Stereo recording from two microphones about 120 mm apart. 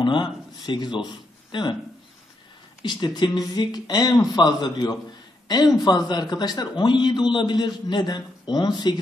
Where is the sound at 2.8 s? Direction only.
40° left (ahead or behind).